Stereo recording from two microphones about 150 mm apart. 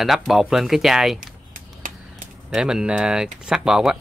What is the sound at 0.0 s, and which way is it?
Speech, centre (ahead or behind).